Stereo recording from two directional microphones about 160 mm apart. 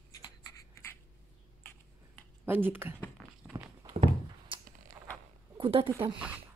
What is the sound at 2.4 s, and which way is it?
Speech, 10° right (ahead or behind).